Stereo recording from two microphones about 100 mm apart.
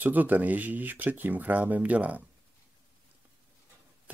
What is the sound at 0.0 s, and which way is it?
Speech, 15° right (ahead or behind).